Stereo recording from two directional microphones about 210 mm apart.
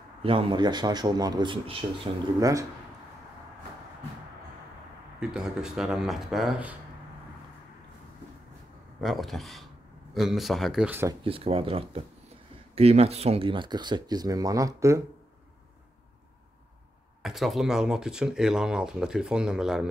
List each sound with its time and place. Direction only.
0.2 s speech: 25° right (ahead or behind)
5.2 s speech: 5° right (ahead or behind)
9.0 s speech: centre (ahead or behind)
11.2 s speech: 25° right (ahead or behind)
17.2 s speech: centre (ahead or behind)